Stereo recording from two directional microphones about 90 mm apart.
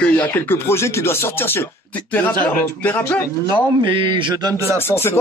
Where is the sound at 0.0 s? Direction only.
15° left (ahead or behind).